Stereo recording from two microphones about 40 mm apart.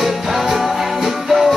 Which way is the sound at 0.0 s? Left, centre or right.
Centre.